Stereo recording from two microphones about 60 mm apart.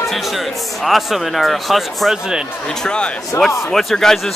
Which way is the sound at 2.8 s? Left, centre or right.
Centre.